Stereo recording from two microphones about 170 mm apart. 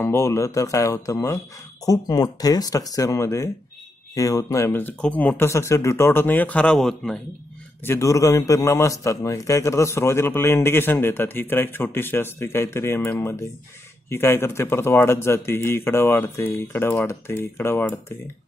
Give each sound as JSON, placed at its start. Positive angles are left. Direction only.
{"t": 0.0, "sound": "a man's voice", "side_deg": 15}
{"t": 7.8, "sound": "a man's voice", "side_deg": 15}